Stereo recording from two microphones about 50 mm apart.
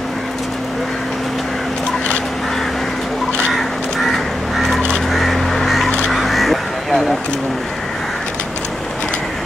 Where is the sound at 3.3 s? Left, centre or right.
Left.